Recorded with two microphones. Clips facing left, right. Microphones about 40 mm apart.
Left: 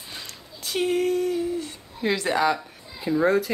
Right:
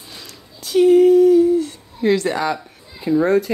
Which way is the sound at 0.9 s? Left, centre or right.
Left.